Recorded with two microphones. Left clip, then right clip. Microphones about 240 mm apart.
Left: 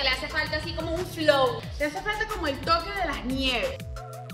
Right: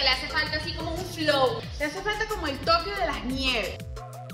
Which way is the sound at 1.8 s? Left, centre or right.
Centre.